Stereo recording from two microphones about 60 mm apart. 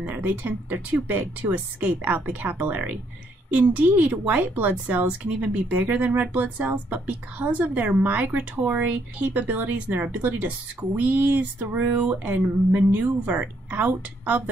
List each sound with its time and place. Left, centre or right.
0.0 s a woman's voice: right